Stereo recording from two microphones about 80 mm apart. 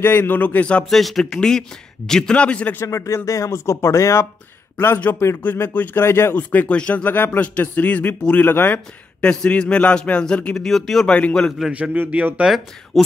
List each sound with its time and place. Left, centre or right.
0.0 s a man's voice: left
0.8 s speech: centre; by 2.9 s left
2.9 s speech: left
4.7 s a man's voice: left
6.3 s a man's voice: left
8.5 s a man's voice: left
8.7 s speech: centre
11.7 s a man's voice: centre
12.4 s speech: centre